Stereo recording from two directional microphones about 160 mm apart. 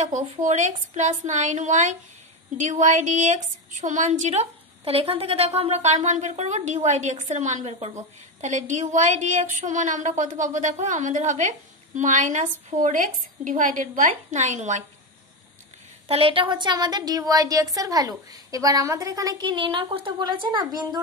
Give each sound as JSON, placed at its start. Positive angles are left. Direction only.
{"t": 0.0, "sound": "a woman's voice", "side_deg": -50}
{"t": 16.1, "sound": "a woman's voice", "side_deg": -35}